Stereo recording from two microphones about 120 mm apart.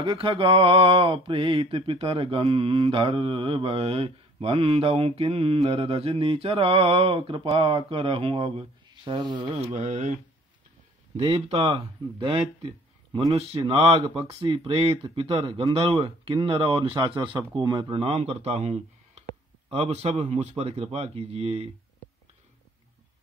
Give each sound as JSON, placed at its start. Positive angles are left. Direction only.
{"t": 0.0, "sound": "mantra", "side_deg": -45}
{"t": 8.8, "sound": "speech", "side_deg": -40}
{"t": 9.8, "sound": "speech", "side_deg": -80}
{"t": 11.1, "sound": "a man's voice", "side_deg": -60}
{"t": 11.6, "sound": "speech", "side_deg": -45}
{"t": 13.3, "sound": "a man's voice", "side_deg": -55}
{"t": 13.6, "sound": "mantra", "side_deg": -50}
{"t": 19.7, "sound": "a man's voice", "side_deg": -55}